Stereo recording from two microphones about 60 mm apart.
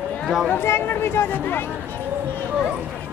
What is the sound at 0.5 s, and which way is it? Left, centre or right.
Speech, left.